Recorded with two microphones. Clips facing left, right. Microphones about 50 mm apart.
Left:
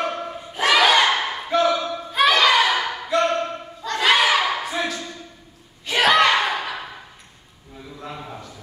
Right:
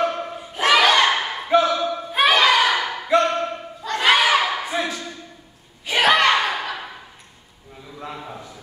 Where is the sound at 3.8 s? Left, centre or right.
Centre.